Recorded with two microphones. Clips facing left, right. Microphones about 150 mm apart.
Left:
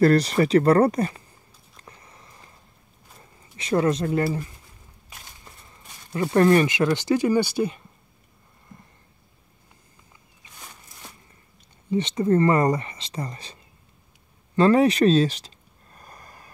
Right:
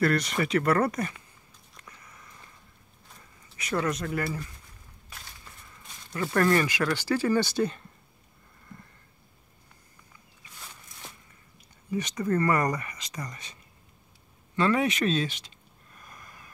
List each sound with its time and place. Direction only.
0.0 s speech: 35° left (ahead or behind)
1.8 s walk: 30° left (ahead or behind)
3.5 s speech: 30° left (ahead or behind)
5.1 s a sound: 20° left (ahead or behind)
6.1 s speech: 25° left (ahead or behind)
11.9 s speech: 25° left (ahead or behind)
14.5 s a sound: 35° left (ahead or behind)